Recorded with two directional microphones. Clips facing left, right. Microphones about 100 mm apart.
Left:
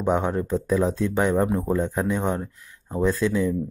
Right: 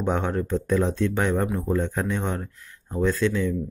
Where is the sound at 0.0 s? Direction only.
10° left (ahead or behind).